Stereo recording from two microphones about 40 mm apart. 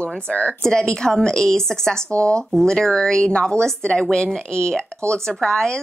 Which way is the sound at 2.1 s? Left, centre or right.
Left.